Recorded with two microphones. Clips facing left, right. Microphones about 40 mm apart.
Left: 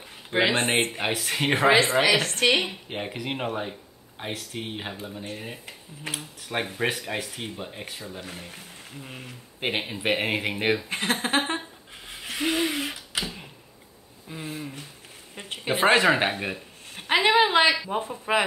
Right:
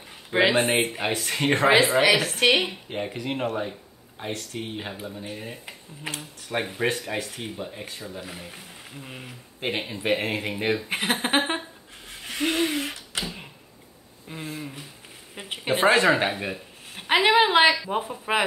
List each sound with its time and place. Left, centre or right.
0.4 s speech: centre
2.9 s speech: centre
5.2 s speech: centre
6.1 s speech: centre
9.7 s speech: centre
10.9 s speech: centre
12.1 s a sound: centre
14.3 s a sound: centre
15.7 s a man's voice: centre